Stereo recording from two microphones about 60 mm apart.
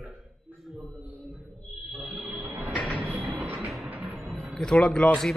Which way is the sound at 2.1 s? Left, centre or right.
Right.